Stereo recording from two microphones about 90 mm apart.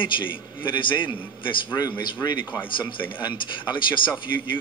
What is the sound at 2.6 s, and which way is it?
A man's voice, 65° left (ahead or behind).